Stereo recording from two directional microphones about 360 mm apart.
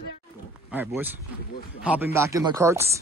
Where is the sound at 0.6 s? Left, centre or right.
Centre.